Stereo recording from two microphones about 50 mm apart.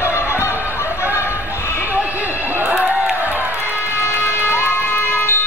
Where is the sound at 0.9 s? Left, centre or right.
Left.